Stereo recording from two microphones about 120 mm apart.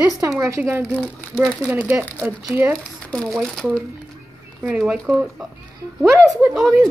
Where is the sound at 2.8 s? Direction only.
5° left (ahead or behind).